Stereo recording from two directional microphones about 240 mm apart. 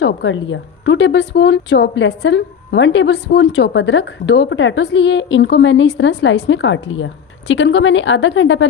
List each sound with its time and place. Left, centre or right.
0.0 s a woman's voice: left